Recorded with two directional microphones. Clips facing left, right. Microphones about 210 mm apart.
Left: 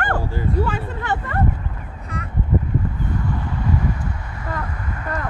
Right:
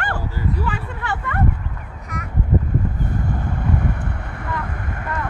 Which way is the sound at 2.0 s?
30° left (ahead or behind).